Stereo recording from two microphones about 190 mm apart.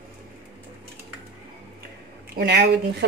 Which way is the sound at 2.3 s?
60° right (ahead or behind).